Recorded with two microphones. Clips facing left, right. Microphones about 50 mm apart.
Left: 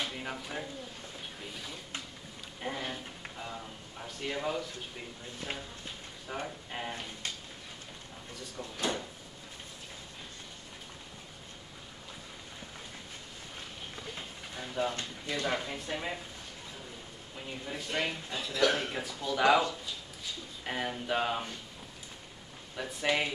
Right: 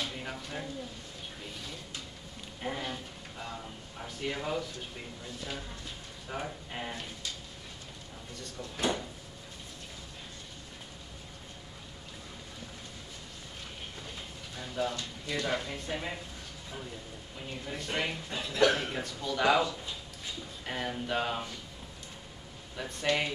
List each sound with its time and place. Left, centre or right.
0.1 s a sound: centre
2.8 s a sound: centre
4.0 s speech: centre
5.5 s speech: left
6.2 s a man's voice: centre
8.7 s drawer open or close: centre
14.1 s a sound: left
14.7 s speech: left; by 16.2 s centre
17.4 s a man's voice: centre
17.8 s a man's voice: centre
18.7 s a man's voice: centre
20.6 s speech: centre
22.8 s a man's voice: centre